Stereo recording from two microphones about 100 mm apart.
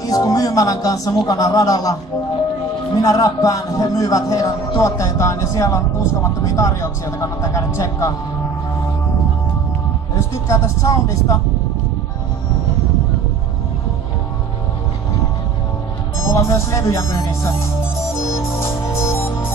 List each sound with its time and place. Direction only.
0.0 s speech: 35° left (ahead or behind)
3.0 s speech: 35° left (ahead or behind)
10.1 s speech: 30° left (ahead or behind)
16.2 s speech: 30° left (ahead or behind)
18.7 s music: 30° left (ahead or behind)